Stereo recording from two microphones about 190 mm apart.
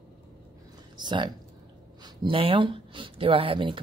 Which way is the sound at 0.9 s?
25° right (ahead or behind).